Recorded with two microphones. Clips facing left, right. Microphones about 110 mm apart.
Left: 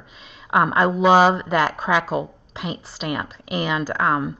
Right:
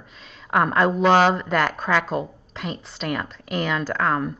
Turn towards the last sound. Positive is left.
turn(degrees=5)  # may be behind; listen again after turning